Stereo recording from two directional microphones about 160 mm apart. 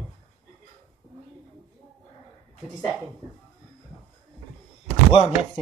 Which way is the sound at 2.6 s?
5° right (ahead or behind).